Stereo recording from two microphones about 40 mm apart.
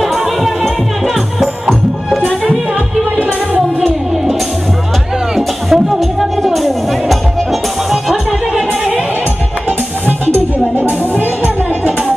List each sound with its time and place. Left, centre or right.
0.4 s music: centre
1.7 s music: centre
3.2 s music: right
5.3 s music: centre
10.8 s music: right